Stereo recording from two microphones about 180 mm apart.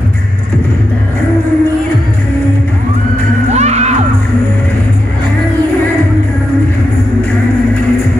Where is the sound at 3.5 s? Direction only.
40° right (ahead or behind).